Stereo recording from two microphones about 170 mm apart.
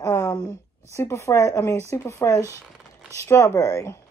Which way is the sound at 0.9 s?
15° left (ahead or behind).